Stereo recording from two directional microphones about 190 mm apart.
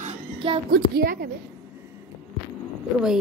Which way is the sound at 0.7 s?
55° right (ahead or behind).